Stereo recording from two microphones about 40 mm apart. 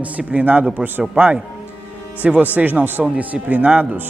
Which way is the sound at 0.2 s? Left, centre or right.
Centre.